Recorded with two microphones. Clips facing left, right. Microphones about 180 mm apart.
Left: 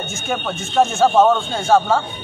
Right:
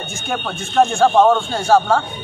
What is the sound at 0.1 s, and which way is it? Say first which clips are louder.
A man's voice: right 1 dB; centre (ahead or behind).